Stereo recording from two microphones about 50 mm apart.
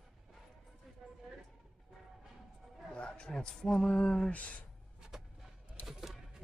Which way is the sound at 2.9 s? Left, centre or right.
Centre.